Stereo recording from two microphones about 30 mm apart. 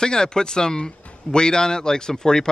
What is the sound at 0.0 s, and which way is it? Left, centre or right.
A man's voice, left.